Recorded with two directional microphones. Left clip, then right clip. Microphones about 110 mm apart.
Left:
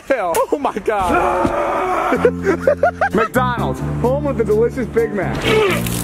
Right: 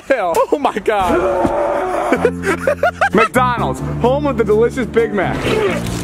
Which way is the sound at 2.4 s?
50° right (ahead or behind).